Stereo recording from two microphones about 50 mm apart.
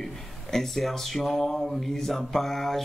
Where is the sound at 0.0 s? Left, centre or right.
Centre.